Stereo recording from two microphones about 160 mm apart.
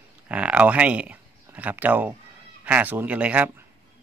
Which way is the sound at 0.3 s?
10° right (ahead or behind).